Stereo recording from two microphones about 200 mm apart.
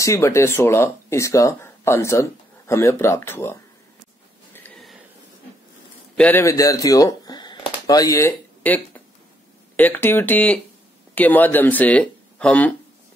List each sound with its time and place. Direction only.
0.0 s speech: 15° left (ahead or behind)
6.1 s speech: 10° left (ahead or behind)